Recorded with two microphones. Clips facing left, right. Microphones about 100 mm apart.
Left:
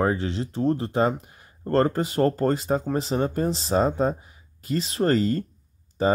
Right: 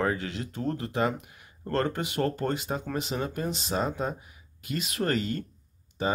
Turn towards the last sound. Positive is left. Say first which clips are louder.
# left 7 dB
turn(degrees=35)  # may be behind; listen again after turning